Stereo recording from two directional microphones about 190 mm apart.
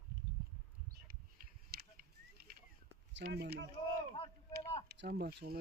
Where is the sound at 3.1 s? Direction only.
60° right (ahead or behind).